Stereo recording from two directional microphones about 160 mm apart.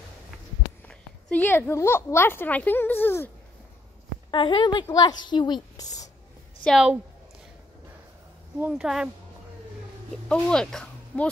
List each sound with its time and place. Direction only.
0.8 s speech: 10° left (ahead or behind)
4.3 s a woman's voice: 30° left (ahead or behind)
6.6 s speech: centre (ahead or behind)
8.5 s speech: 5° right (ahead or behind)
10.1 s speech: 5° left (ahead or behind)